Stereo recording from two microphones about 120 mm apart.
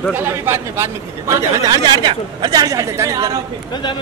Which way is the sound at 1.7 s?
40° right (ahead or behind).